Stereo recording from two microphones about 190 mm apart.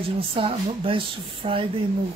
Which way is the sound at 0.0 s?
30° right (ahead or behind).